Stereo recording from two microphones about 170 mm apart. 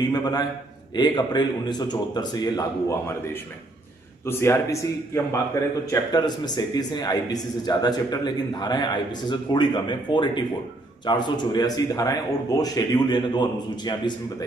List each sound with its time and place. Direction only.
0.1 s speech: 25° left (ahead or behind)
4.3 s speech: 15° left (ahead or behind)